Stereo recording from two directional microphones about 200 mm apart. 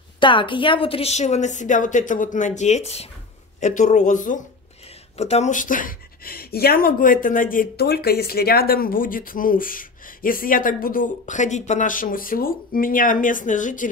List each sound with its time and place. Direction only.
0.2 s a woman's voice: 25° left (ahead or behind); by 13.8 s 40° left (ahead or behind)